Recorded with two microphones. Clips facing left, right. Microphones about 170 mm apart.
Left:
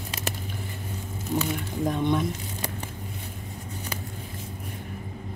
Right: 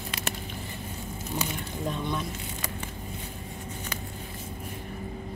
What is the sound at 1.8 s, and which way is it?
Speech, 15° left (ahead or behind).